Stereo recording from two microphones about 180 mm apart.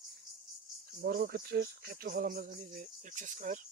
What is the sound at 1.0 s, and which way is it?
Speech, 60° right (ahead or behind).